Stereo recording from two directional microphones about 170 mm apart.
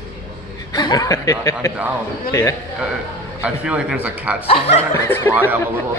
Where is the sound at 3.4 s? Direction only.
5° right (ahead or behind).